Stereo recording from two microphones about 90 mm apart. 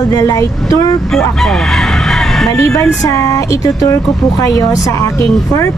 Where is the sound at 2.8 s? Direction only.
35° left (ahead or behind).